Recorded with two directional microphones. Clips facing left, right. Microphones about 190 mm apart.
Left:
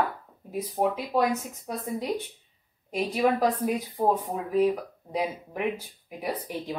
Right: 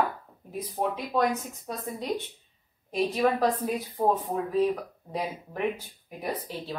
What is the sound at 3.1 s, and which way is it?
Speech, 10° left (ahead or behind).